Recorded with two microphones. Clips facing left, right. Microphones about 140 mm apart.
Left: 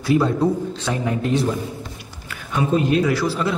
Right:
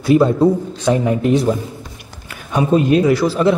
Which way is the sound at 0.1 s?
20° right (ahead or behind).